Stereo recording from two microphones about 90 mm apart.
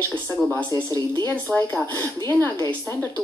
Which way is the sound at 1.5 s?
25° left (ahead or behind).